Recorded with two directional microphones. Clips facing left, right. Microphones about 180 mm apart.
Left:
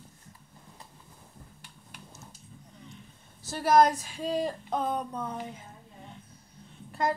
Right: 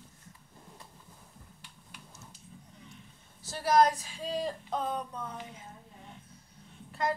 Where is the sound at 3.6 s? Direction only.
50° left (ahead or behind).